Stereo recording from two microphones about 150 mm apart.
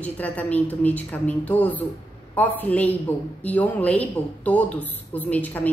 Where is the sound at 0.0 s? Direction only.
10° left (ahead or behind).